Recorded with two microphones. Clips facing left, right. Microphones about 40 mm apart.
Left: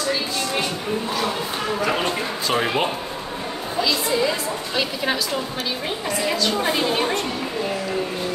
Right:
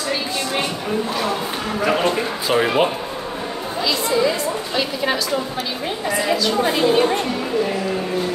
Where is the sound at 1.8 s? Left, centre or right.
Centre.